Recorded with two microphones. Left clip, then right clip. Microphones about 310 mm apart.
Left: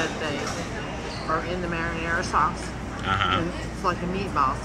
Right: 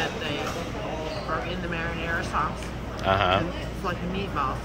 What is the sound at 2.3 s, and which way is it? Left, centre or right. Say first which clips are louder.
Speech: left 6 dB; right.